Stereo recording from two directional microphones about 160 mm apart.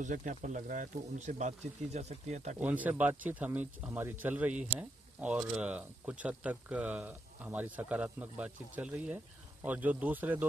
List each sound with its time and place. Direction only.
0.0 s speech: 55° right (ahead or behind)
2.6 s speech: 10° right (ahead or behind)